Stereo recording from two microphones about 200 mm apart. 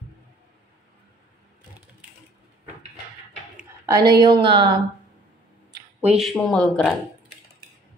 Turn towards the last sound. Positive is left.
turn(degrees=5)  # may be behind; listen again after turning